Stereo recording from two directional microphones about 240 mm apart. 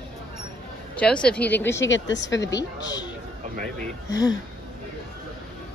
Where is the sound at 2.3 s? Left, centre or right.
Centre.